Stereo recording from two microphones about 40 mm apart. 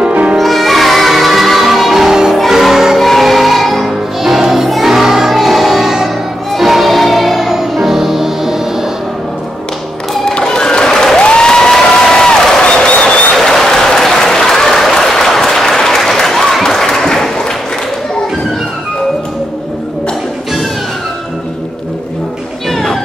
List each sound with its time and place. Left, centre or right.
0.1 s music: right
0.4 s music: centre
10.3 s a sound: centre
11.1 s applause: left
12.6 s applause: left
13.3 s applause: centre